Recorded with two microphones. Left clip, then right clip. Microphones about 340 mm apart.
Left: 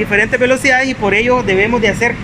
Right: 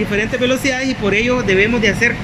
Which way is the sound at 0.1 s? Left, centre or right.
Left.